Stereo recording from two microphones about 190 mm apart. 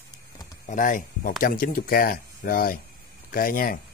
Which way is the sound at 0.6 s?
45° left (ahead or behind).